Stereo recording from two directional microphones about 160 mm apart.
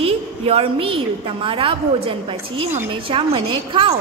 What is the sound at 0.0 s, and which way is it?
A woman's voice, 35° right (ahead or behind).